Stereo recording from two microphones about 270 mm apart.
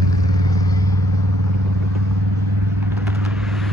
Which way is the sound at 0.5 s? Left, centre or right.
Centre.